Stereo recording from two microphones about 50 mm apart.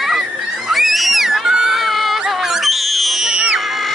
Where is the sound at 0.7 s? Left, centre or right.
Centre.